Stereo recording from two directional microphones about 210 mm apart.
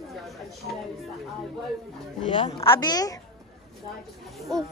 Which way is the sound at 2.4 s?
15° left (ahead or behind).